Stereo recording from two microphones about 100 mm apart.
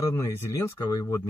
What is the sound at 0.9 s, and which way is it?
Speech, 40° left (ahead or behind).